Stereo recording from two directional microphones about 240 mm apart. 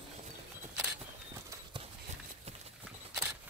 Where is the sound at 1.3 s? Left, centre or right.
Centre.